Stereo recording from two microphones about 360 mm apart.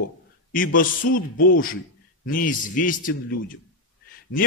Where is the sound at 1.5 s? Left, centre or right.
Left.